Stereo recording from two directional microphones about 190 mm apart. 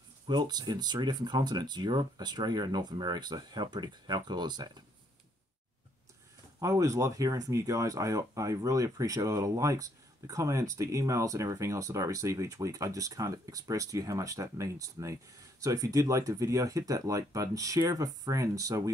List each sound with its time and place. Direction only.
0.3 s speech: 20° right (ahead or behind)
6.6 s speech: 15° right (ahead or behind)